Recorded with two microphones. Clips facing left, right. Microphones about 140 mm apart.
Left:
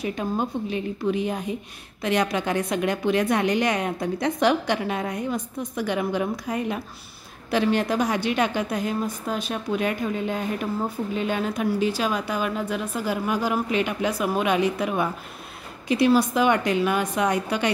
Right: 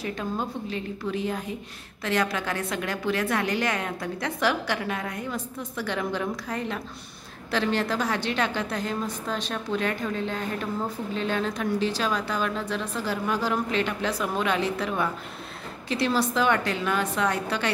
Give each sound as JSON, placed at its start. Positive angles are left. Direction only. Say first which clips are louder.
{"t": 0.0, "sound": "a woman's voice", "louder": "left 4 dB", "side_deg": 15}